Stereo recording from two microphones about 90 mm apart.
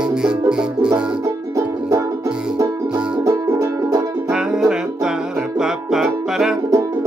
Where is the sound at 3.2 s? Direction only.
40° right (ahead or behind).